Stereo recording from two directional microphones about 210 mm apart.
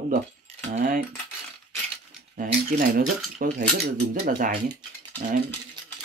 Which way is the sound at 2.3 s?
40° right (ahead or behind).